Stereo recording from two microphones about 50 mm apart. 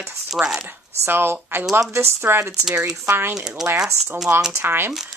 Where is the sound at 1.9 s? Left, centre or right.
Right.